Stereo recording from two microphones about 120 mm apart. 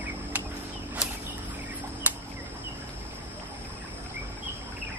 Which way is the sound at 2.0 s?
15° right (ahead or behind).